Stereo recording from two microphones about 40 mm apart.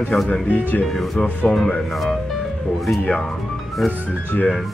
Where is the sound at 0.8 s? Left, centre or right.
Centre.